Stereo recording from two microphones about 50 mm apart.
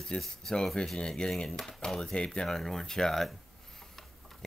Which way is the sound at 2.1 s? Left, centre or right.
Centre.